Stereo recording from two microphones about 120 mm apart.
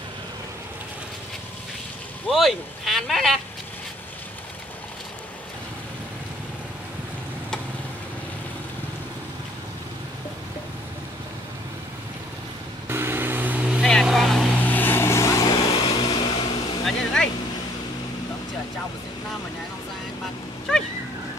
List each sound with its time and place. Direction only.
2.2 s speech: centre (ahead or behind)
12.8 s vehicle: 20° right (ahead or behind); by 14.5 s centre (ahead or behind)
14.6 s vehicle: 15° left (ahead or behind); by 16.4 s 40° left (ahead or behind)
16.8 s vehicle: 5° left (ahead or behind)
20.7 s a sound: 5° left (ahead or behind)